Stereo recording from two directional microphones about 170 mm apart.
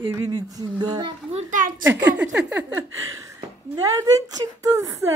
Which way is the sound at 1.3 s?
50° right (ahead or behind).